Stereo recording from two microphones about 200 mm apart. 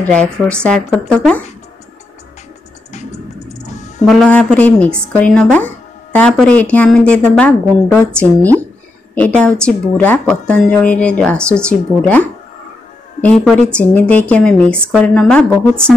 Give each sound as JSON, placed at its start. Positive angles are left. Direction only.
{"t": 0.0, "sound": "a woman's voice", "side_deg": 5}
{"t": 2.9, "sound": "music", "side_deg": 35}
{"t": 4.0, "sound": "a woman's voice", "side_deg": 0}
{"t": 13.2, "sound": "a woman's voice", "side_deg": 5}